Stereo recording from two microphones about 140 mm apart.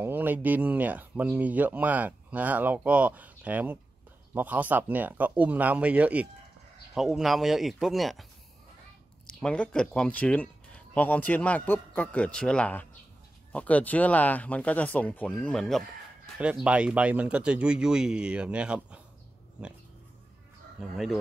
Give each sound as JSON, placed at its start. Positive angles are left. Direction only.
{"t": 0.0, "sound": "speech", "side_deg": -15}
{"t": 9.4, "sound": "speech", "side_deg": 5}
{"t": 16.6, "sound": "speech", "side_deg": -10}
{"t": 20.9, "sound": "speech", "side_deg": 0}